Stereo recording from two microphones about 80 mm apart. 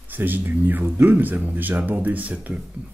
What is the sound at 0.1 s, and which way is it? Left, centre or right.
Speech, right.